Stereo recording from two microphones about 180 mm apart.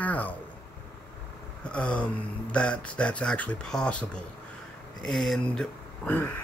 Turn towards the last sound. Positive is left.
turn(degrees=10)  # may be behind; listen again after turning